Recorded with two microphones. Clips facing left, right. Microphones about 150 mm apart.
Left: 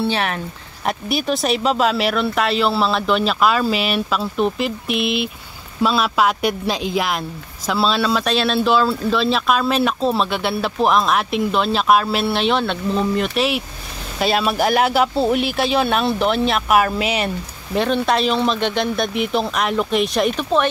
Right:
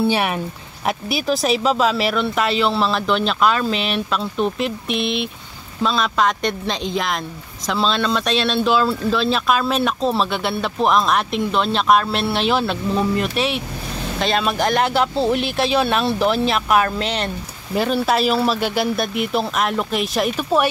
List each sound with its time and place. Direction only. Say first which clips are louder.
0.0 s speech: right 2 dB; 10° right (ahead or behind); by 17.3 s 5° left (ahead or behind)
17.7 s speech: even; 5° right (ahead or behind)